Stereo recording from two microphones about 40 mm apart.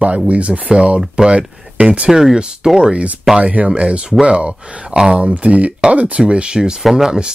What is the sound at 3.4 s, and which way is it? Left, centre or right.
Speech, right.